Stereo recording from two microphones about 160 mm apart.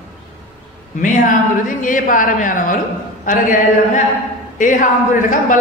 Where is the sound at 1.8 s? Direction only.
55° left (ahead or behind).